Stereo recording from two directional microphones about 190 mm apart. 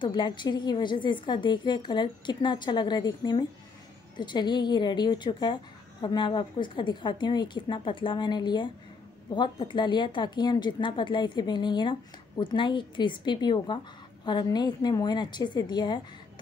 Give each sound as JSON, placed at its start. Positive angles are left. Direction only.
{"t": 0.0, "sound": "a woman's voice", "side_deg": 25}